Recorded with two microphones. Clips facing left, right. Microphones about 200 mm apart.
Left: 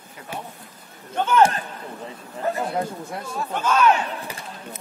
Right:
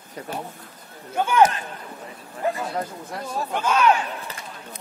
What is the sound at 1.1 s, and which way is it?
Speech, 10° right (ahead or behind).